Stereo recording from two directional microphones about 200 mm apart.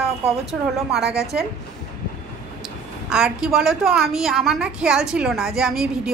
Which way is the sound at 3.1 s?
5° right (ahead or behind).